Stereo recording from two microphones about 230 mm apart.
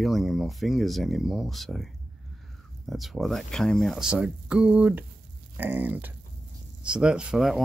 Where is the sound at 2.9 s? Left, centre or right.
Centre.